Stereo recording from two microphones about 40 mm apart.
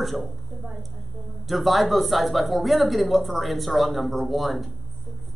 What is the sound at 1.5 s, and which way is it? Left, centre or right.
A man's voice, centre.